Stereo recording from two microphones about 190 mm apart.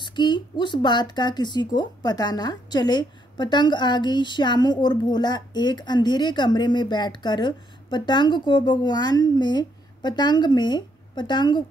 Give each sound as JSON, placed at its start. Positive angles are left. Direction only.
{"t": 0.0, "sound": "speech", "side_deg": 25}